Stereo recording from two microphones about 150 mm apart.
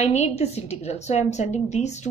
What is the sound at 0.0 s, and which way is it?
A woman's voice, 45° left (ahead or behind).